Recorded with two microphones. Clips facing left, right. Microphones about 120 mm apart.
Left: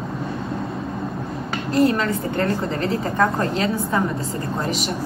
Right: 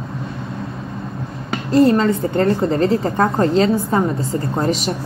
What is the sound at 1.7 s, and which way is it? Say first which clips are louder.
A woman's voice: right 5 dB; 35° right (ahead or behind).